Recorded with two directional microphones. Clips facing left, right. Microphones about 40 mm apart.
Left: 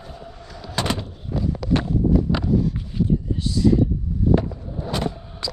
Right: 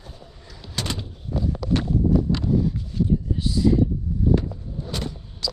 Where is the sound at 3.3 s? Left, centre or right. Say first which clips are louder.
Left 2 dB; centre.